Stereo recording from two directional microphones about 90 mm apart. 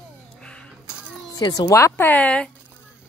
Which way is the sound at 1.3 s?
45° left (ahead or behind).